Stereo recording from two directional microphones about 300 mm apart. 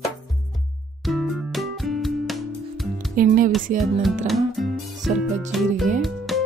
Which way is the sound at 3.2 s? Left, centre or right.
Right.